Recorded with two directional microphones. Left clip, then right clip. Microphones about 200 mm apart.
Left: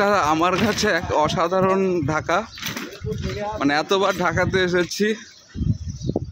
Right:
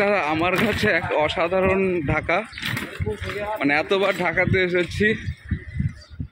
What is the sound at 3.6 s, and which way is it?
Speech, 15° left (ahead or behind).